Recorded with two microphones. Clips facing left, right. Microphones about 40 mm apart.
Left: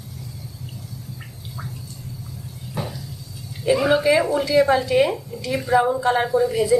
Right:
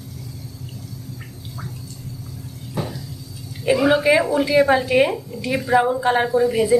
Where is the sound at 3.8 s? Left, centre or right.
Centre.